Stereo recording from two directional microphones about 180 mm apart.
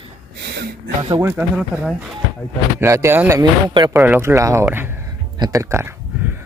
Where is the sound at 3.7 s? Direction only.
25° right (ahead or behind).